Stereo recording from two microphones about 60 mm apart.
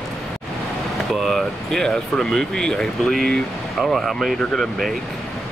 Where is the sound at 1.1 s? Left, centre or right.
Centre.